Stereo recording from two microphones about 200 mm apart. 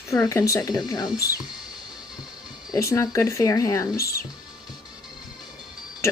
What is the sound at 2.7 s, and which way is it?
Speech, 15° left (ahead or behind).